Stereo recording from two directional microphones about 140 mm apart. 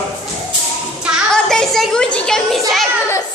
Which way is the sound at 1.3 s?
5° left (ahead or behind).